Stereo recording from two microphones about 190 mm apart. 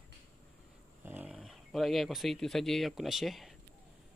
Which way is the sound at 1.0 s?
10° right (ahead or behind).